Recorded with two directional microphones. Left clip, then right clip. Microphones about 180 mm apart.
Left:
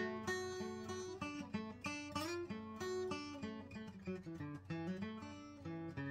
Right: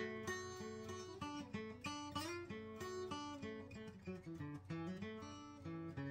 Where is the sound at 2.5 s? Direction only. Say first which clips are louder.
Left 4 dB; 20° left (ahead or behind).